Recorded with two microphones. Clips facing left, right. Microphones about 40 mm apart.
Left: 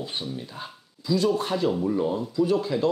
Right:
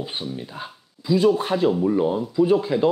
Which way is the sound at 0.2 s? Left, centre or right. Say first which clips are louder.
Right 3 dB; centre.